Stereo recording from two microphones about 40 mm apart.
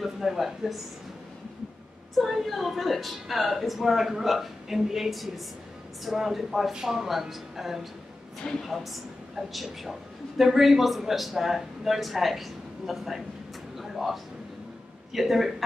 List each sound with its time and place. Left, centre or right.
0.0 s a sound: centre
2.1 s a man's voice: centre
6.7 s speech: centre
8.4 s a woman's voice: left
9.5 s a man's voice: centre
13.7 s a sound: centre
15.1 s a man's voice: centre